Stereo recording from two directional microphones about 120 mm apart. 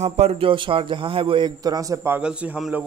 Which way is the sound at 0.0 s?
65° right (ahead or behind).